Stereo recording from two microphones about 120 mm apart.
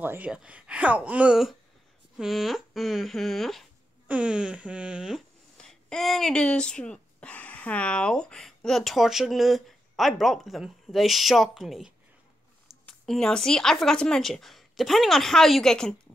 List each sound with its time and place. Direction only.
0.0 s speech: 15° right (ahead or behind)
5.6 s speech: 5° left (ahead or behind)